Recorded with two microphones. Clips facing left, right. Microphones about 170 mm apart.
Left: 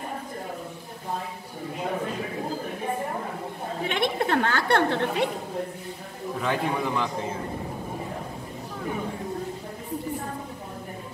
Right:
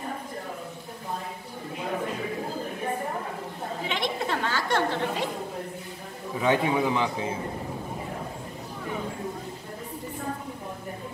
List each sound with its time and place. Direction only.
3.8 s chatter: 55° left (ahead or behind)
6.4 s a man's voice: 5° right (ahead or behind)